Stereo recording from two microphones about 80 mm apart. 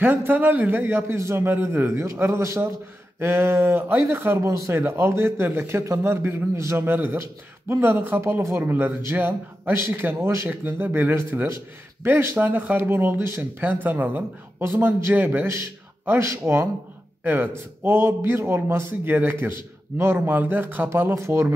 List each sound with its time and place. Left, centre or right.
0.0 s speech: right
6.9 s a man's voice: right
21.1 s speech: right